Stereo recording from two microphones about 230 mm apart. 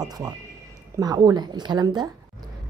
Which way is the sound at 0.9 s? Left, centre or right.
Centre.